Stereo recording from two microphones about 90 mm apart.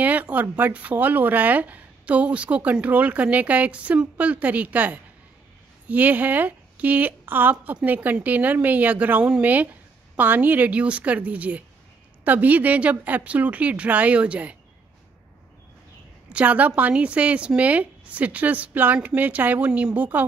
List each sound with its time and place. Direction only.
0.0 s speech: 15° right (ahead or behind)
16.3 s speech: 15° right (ahead or behind)